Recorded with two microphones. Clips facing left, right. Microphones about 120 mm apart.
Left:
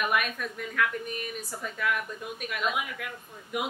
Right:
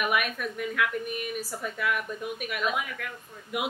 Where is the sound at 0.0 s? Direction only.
5° right (ahead or behind).